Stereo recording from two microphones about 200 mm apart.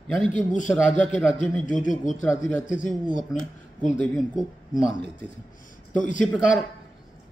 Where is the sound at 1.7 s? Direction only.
40° left (ahead or behind).